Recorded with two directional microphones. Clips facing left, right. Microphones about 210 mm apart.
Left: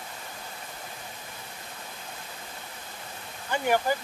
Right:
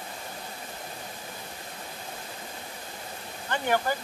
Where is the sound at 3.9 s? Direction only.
10° left (ahead or behind).